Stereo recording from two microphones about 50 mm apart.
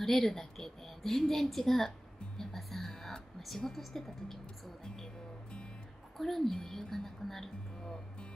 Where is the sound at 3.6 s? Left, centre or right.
Centre.